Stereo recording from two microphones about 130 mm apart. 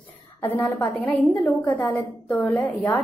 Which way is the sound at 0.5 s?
15° left (ahead or behind).